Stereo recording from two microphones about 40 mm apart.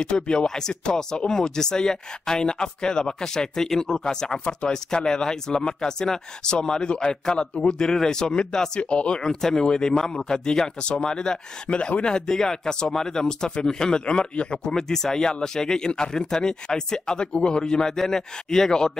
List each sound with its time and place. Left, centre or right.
0.0 s speech: left
14.6 s speech: centre